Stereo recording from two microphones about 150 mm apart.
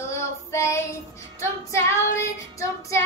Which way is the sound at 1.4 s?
20° left (ahead or behind).